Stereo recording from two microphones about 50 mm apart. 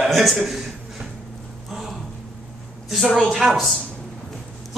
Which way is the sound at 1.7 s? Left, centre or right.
Centre.